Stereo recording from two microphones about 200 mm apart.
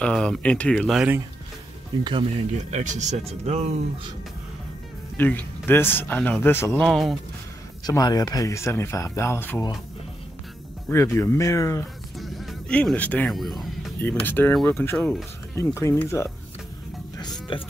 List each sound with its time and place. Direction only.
0.0 s speech: 5° left (ahead or behind)
2.5 s speech: 35° right (ahead or behind)
5.1 s speech: 10° left (ahead or behind)
7.8 s speech: 20° left (ahead or behind)
10.9 s speech: 15° left (ahead or behind)
12.2 s speech: centre (ahead or behind)
17.2 s music: 25° left (ahead or behind)